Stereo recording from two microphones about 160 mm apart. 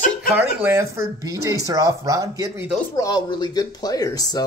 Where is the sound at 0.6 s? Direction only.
20° right (ahead or behind).